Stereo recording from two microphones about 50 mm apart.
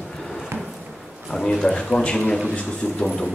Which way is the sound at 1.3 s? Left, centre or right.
Centre.